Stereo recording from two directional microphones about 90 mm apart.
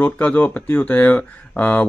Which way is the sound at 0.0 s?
15° left (ahead or behind).